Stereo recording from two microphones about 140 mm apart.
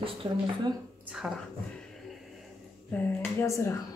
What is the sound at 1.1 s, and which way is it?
Speech, 5° right (ahead or behind).